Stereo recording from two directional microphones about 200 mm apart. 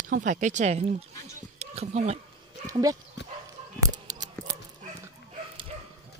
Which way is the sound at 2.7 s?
15° right (ahead or behind).